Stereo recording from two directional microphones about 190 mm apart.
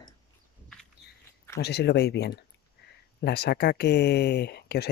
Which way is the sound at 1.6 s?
60° left (ahead or behind).